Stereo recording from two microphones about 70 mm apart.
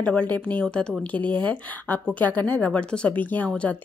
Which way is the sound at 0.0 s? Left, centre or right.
Left.